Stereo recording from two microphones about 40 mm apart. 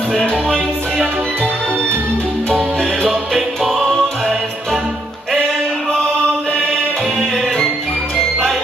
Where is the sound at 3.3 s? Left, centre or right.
Centre.